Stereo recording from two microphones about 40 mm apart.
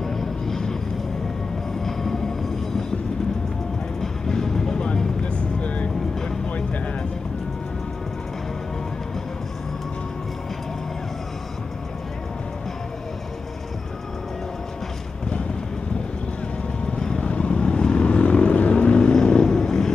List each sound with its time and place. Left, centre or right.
0.0 s vehicle: centre
1.9 s train: centre
4.0 s music: centre; by 5.9 s left
17.2 s vehicle: left
19.2 s vehicle: centre